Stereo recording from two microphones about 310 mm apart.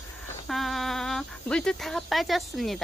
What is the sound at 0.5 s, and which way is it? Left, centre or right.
Speech, centre.